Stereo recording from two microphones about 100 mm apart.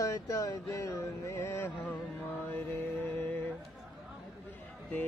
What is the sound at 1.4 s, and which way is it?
Mantra, 20° left (ahead or behind).